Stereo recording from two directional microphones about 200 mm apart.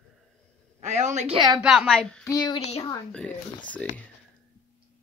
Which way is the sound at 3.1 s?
5° left (ahead or behind).